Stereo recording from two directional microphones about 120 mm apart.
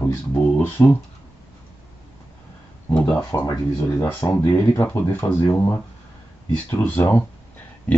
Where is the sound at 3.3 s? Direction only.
25° left (ahead or behind).